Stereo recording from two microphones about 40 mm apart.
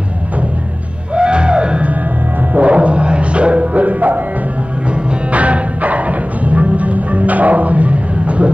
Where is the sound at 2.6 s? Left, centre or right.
Right.